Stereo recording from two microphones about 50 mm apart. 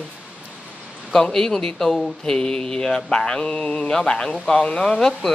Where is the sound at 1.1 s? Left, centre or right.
Centre.